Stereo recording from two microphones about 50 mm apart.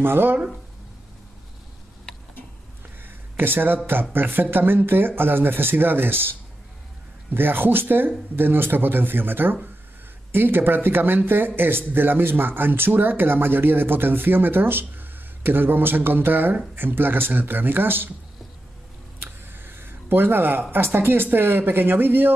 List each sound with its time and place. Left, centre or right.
0.0 s speech: right
3.0 s speech: right
7.3 s speech: right
19.1 s a sound: right
20.7 s speech: right